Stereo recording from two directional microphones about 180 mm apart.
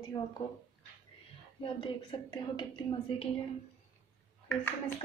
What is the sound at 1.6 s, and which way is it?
A woman's voice, 25° left (ahead or behind).